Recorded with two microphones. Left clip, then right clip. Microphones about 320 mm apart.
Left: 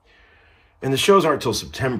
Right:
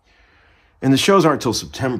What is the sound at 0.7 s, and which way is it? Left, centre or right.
Speech, right.